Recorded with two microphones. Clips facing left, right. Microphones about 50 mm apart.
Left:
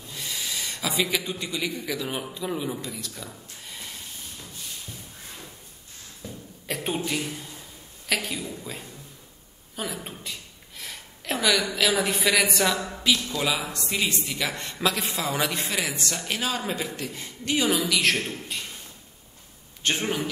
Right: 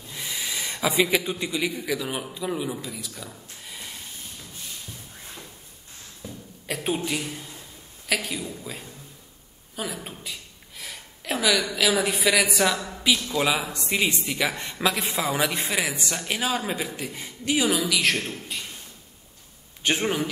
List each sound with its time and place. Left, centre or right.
0.1 s a man's voice: centre
6.2 s cough: centre
7.1 s a woman's voice: centre
13.3 s speech: centre
19.8 s speech: centre